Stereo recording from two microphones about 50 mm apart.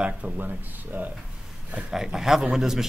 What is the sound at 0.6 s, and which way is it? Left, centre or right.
Speech, right.